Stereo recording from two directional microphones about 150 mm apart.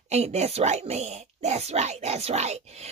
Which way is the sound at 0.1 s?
45° right (ahead or behind).